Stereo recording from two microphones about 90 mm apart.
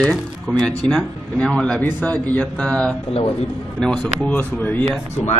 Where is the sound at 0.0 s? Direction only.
10° left (ahead or behind).